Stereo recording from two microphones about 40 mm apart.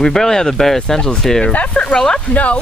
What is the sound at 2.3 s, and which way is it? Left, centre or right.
Speech, left.